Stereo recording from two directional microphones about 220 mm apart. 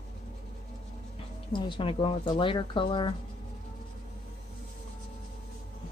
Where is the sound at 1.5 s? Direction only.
20° left (ahead or behind).